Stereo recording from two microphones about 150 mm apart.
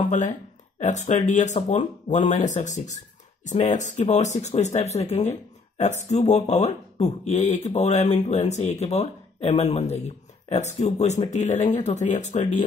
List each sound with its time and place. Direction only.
0.0 s speech: 50° left (ahead or behind)